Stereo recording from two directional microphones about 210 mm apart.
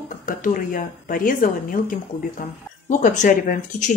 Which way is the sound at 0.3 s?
40° left (ahead or behind).